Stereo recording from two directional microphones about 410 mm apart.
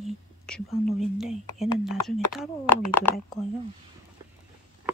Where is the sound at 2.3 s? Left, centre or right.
Centre.